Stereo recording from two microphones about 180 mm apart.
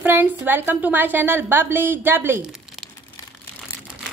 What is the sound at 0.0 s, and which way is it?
A woman's voice, 10° right (ahead or behind).